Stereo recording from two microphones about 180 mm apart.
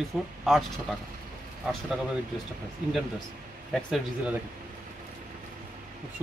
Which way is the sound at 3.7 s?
Centre (ahead or behind).